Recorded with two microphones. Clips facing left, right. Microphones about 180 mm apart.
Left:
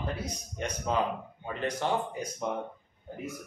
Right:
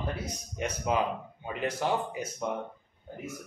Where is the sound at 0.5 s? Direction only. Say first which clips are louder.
Right 1 dB; 5° right (ahead or behind).